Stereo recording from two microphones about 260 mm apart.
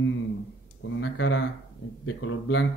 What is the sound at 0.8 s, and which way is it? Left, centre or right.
Speech, left.